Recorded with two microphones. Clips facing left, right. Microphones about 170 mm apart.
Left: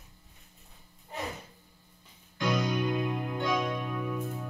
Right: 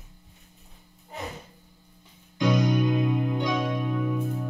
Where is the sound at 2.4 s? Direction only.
15° right (ahead or behind).